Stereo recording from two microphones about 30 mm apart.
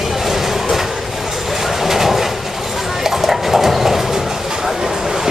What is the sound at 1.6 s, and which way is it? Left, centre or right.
Train, centre.